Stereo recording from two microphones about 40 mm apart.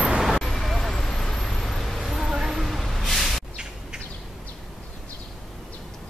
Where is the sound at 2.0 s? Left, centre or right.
Centre.